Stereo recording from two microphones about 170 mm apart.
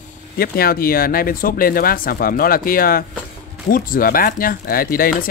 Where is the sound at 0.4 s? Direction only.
60° left (ahead or behind).